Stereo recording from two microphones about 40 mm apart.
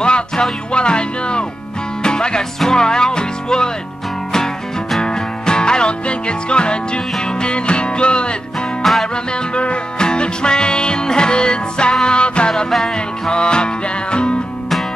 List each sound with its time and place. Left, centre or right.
0.0 s music: left
5.0 s music: centre